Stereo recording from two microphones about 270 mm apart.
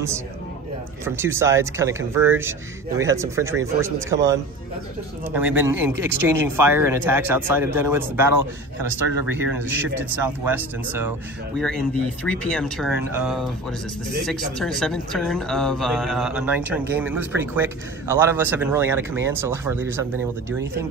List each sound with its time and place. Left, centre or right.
1.0 s speech: centre
9.3 s speech: centre